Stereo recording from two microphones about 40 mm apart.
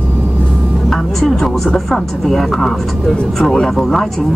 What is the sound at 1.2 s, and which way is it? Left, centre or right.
Speech, centre.